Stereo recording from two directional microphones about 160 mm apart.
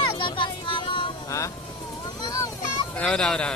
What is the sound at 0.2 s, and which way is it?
Vehicle, 30° left (ahead or behind).